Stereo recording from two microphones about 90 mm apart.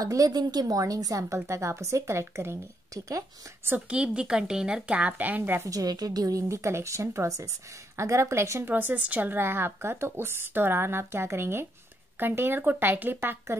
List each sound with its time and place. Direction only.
0.0 s a woman's voice: 45° right (ahead or behind)
3.9 s a woman's voice: 10° right (ahead or behind)
5.7 s a woman's voice: 45° right (ahead or behind); by 13.6 s 25° right (ahead or behind)